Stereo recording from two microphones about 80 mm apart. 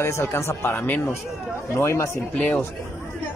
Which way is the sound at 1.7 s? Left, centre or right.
Left.